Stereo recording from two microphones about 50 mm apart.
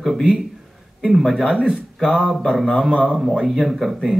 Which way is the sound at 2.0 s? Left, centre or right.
Centre.